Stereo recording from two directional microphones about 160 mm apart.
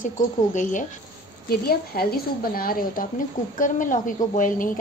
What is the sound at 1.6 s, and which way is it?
A woman's voice, 70° left (ahead or behind).